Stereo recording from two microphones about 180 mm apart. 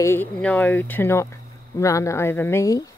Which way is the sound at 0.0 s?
10° left (ahead or behind).